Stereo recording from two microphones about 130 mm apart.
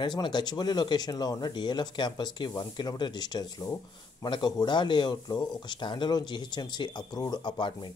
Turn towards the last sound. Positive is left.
turn(degrees=35)  # may be behind; listen again after turning